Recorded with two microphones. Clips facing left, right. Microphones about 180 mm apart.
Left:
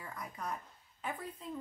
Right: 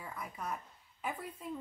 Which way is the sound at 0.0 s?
5° right (ahead or behind).